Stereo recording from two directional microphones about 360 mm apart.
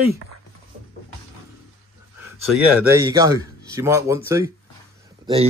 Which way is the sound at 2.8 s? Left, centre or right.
Centre.